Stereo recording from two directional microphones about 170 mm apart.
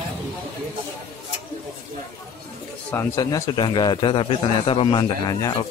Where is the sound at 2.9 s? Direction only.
20° left (ahead or behind).